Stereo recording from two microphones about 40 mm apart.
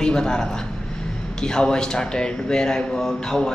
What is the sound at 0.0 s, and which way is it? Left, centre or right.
Speech, centre.